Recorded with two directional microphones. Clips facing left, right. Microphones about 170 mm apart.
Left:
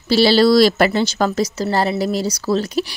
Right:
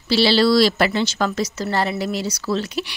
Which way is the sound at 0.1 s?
45° left (ahead or behind).